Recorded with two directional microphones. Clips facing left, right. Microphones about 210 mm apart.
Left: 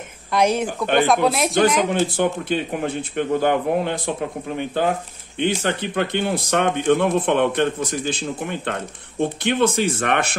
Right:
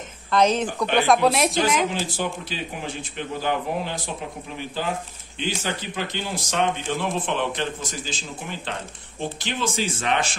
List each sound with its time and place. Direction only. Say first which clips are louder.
0.3 s speech: left 1 dB; 10° left (ahead or behind)
0.9 s speech: left 1 dB; centre (ahead or behind)
1.9 s speech: left 7 dB; 55° left (ahead or behind)